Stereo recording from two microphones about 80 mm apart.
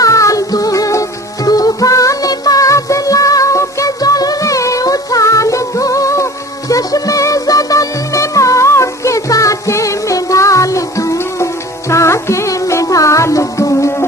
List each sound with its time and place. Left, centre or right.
0.0 s music: left